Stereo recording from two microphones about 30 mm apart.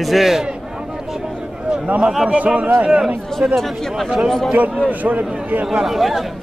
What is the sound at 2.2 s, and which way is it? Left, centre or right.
Speech, right.